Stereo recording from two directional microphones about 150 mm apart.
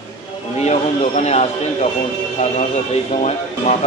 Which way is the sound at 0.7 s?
50° left (ahead or behind).